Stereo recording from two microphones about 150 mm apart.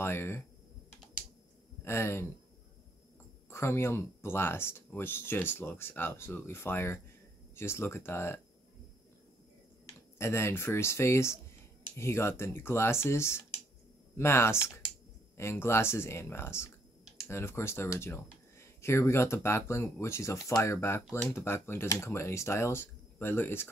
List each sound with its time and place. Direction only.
0.0 s speech: 15° left (ahead or behind)
1.9 s speech: 15° left (ahead or behind)
3.4 s speech: 15° left (ahead or behind)
9.8 s speech: 15° left (ahead or behind)